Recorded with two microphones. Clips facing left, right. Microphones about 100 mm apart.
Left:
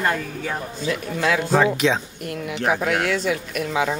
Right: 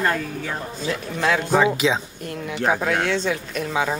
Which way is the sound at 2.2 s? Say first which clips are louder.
Even; 30° right (ahead or behind).